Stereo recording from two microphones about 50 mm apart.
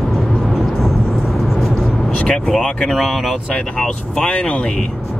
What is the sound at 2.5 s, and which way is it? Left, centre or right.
Speech, centre.